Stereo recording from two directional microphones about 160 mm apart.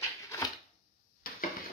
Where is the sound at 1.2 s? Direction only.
65° left (ahead or behind).